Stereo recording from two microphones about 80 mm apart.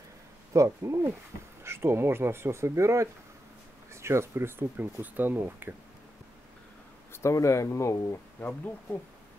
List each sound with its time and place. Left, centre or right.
0.5 s speech: right
7.1 s speech: left
8.4 s speech: left